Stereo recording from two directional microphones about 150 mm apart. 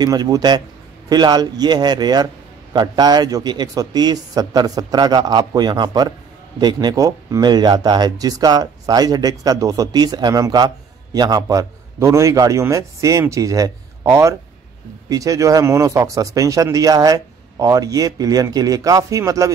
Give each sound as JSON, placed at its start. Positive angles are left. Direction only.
{"t": 0.0, "sound": "speech", "side_deg": -25}